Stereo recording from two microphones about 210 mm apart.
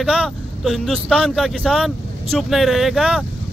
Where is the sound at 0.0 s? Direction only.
5° right (ahead or behind).